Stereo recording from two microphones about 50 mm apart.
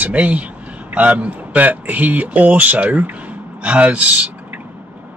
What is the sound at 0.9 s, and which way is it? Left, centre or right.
Speech, right.